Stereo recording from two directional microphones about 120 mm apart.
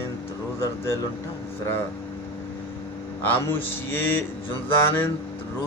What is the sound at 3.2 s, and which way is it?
A man's voice, 15° left (ahead or behind).